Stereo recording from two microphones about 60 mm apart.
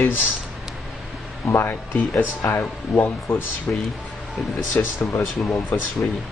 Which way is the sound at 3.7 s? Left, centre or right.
Left.